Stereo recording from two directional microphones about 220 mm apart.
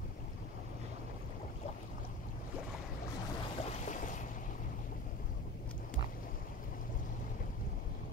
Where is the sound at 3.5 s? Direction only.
30° left (ahead or behind).